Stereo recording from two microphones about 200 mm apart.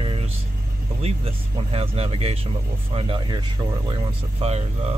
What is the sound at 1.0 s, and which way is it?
Speech, 30° right (ahead or behind).